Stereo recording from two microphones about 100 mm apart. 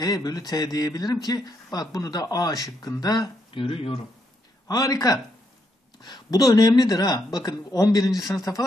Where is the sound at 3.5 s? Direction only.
65° left (ahead or behind).